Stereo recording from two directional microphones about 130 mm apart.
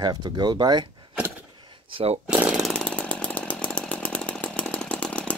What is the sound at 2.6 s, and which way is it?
Chainsaw, 5° left (ahead or behind).